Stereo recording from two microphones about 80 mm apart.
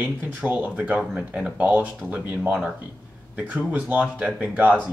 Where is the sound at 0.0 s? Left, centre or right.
Right.